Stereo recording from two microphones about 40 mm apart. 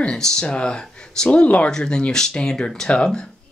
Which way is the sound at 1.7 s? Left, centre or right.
Centre.